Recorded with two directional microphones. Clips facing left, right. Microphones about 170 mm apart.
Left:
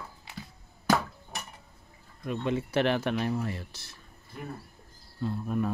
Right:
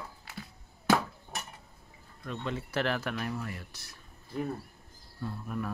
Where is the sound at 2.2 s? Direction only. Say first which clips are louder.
Left 6 dB; 15° left (ahead or behind).